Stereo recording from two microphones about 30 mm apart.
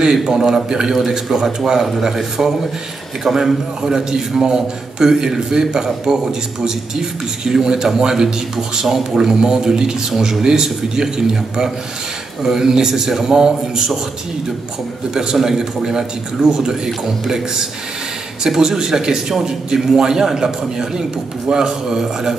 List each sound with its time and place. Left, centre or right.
0.0 s a man's voice: right
15.4 s a man's voice: centre